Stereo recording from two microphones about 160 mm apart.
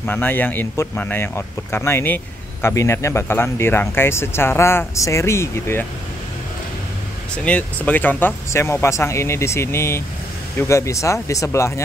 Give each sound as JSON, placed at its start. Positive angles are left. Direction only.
{"t": 0.0, "sound": "speech", "side_deg": 10}
{"t": 7.4, "sound": "speech", "side_deg": 10}